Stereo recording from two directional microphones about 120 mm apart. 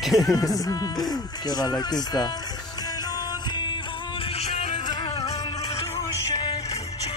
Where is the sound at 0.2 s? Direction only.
30° left (ahead or behind).